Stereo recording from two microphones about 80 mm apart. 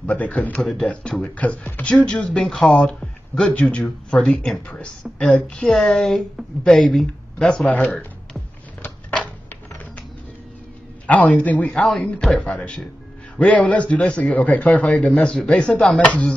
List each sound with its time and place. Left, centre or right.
0.0 s a man's voice: centre
9.1 s typewriter: centre
11.1 s a man's voice: centre
16.1 s chopping: centre